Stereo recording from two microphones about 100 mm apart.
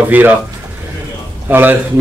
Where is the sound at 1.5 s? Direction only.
20° right (ahead or behind).